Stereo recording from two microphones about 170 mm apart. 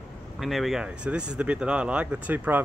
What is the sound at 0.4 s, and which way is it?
Speech, centre (ahead or behind).